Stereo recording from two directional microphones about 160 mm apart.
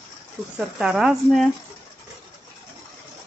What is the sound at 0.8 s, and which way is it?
Speech, 5° right (ahead or behind).